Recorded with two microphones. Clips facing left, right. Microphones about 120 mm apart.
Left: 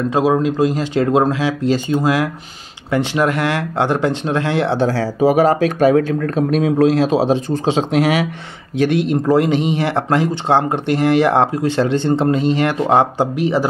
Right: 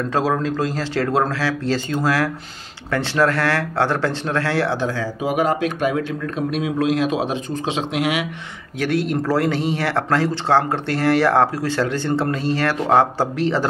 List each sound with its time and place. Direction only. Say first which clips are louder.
0.1 s speech: left 5 dB; 15° left (ahead or behind)
4.7 s speech: left 7 dB; 35° left (ahead or behind)
8.7 s speech: left 5 dB; 20° left (ahead or behind)